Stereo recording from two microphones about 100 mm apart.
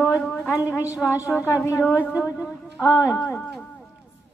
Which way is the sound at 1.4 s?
30° left (ahead or behind).